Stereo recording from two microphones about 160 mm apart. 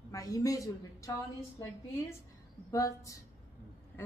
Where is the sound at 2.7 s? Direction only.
20° left (ahead or behind).